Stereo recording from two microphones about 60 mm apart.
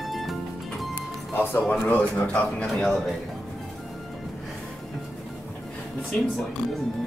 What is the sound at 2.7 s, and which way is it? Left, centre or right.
Speech, centre.